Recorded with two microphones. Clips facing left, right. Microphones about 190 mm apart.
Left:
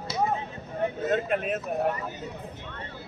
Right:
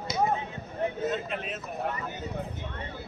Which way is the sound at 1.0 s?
55° left (ahead or behind).